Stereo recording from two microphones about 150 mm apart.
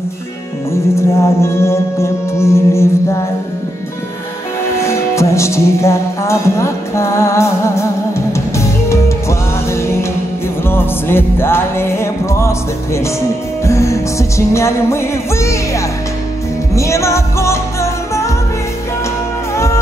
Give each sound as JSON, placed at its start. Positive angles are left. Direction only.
{"t": 0.9, "sound": "music", "side_deg": 20}
{"t": 4.7, "sound": "music", "side_deg": 20}
{"t": 19.5, "sound": "music", "side_deg": 20}